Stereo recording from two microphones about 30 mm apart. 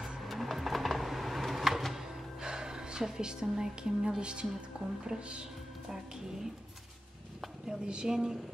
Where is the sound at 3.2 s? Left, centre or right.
Right.